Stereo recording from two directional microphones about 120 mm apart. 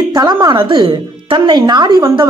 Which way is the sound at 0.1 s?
35° right (ahead or behind).